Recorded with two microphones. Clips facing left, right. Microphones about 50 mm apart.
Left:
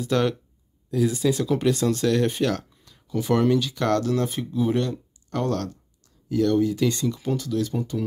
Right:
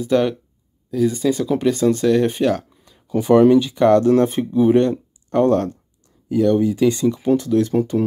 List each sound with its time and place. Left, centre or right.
0.0 s speech: centre
0.8 s speech: centre
3.1 s speech: right
4.1 s speech: right